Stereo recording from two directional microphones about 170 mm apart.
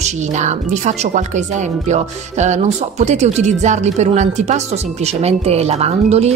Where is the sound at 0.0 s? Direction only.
45° right (ahead or behind).